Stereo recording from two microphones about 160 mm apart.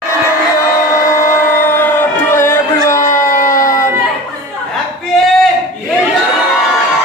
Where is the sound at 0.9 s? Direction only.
20° left (ahead or behind).